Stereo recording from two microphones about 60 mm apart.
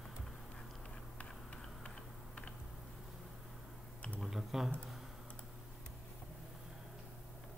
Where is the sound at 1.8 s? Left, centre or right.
Centre.